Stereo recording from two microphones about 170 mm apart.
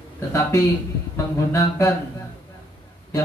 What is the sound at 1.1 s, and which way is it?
Speech, 15° left (ahead or behind).